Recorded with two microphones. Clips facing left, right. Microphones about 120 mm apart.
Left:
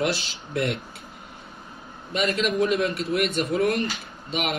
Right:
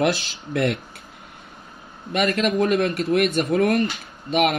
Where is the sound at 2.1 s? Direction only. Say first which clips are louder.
Right 3 dB; 50° right (ahead or behind).